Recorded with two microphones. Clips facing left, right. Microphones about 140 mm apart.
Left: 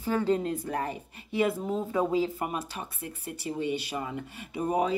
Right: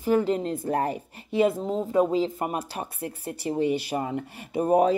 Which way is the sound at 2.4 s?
40° right (ahead or behind).